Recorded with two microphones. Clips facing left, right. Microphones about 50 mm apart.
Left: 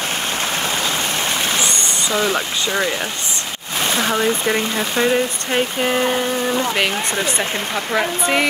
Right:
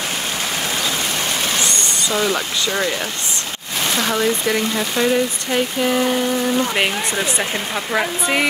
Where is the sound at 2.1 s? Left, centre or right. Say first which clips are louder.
Left 1 dB; centre.